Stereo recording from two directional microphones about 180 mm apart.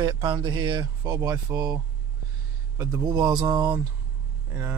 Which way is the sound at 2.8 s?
20° right (ahead or behind).